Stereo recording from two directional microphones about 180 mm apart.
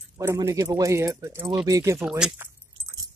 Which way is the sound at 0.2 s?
15° right (ahead or behind).